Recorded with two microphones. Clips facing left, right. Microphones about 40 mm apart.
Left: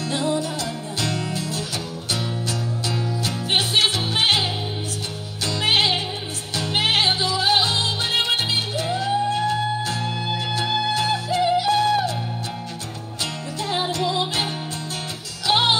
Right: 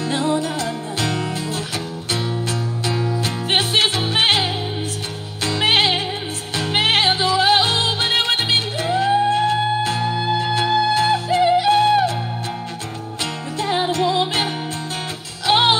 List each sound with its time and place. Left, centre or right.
0.0 s music: right
2.9 s music: right
13.6 s music: right